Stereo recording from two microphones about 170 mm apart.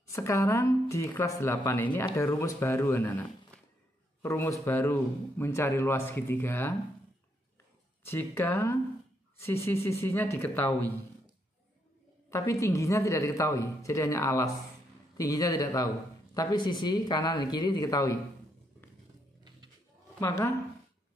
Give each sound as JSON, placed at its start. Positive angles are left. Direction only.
{"t": 0.0, "sound": "speech", "side_deg": 15}
{"t": 8.0, "sound": "speech", "side_deg": 10}
{"t": 12.3, "sound": "speech", "side_deg": 15}
{"t": 20.2, "sound": "speech", "side_deg": 15}